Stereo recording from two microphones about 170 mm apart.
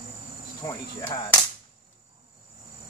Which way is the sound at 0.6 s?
20° left (ahead or behind).